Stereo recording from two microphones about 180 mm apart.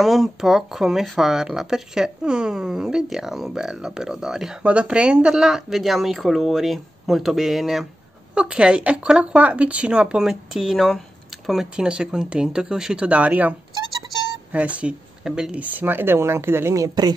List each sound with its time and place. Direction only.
0.0 s speech: centre (ahead or behind); by 17.1 s 20° right (ahead or behind)